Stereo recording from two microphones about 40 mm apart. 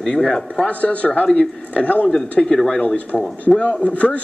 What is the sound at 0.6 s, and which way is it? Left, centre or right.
Speech, left.